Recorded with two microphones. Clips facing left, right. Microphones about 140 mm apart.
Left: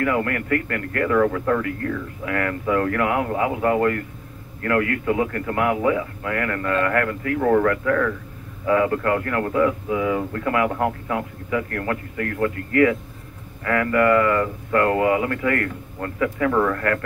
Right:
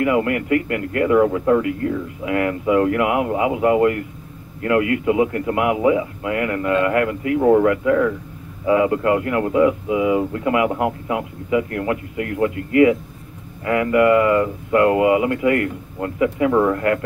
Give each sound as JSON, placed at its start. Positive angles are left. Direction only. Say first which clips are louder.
{"t": 0.0, "sound": "speech", "louder": "right 4 dB", "side_deg": -20}